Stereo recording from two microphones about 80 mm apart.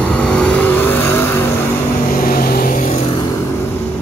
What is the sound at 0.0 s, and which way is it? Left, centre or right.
Vehicle, centre.